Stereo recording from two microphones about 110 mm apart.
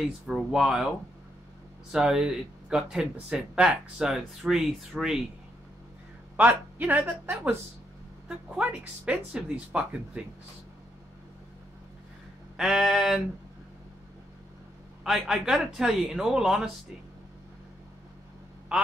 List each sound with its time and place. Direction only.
0.3 s speech: centre (ahead or behind)
6.3 s speech: 15° right (ahead or behind)
8.5 s speech: 10° right (ahead or behind)
12.5 s speech: 5° right (ahead or behind)
15.0 s speech: 5° right (ahead or behind)